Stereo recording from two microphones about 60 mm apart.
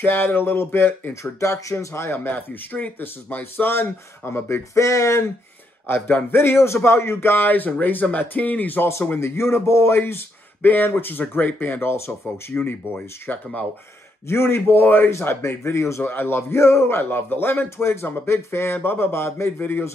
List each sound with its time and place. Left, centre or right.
0.0 s speech: left
1.2 s speech: left
2.1 s speech: left
4.2 s speech: left
4.7 s speech: left
5.9 s speech: left
9.1 s speech: left
14.2 s speech: left
15.0 s speech: left
16.0 s speech: left